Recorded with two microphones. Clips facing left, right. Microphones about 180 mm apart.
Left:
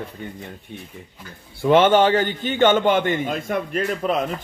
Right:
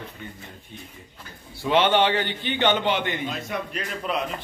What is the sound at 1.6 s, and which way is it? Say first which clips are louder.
A man's voice: left 5 dB; 45° left (ahead or behind).